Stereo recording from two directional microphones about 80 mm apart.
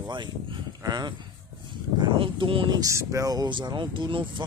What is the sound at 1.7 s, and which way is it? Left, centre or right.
Speech, right.